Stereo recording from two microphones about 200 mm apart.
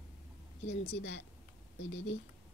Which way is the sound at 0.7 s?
35° left (ahead or behind).